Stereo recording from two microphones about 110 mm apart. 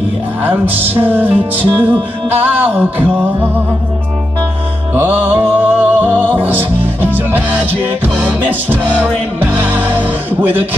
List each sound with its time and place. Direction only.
0.4 s music: 15° right (ahead or behind)
4.9 s music: 15° right (ahead or behind)